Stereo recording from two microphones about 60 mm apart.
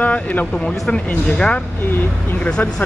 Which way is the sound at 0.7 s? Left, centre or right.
Centre.